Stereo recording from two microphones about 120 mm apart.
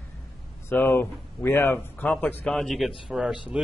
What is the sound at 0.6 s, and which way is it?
Speech, 15° left (ahead or behind).